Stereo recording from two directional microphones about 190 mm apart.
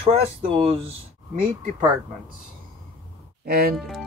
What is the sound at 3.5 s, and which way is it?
Speech, 55° right (ahead or behind).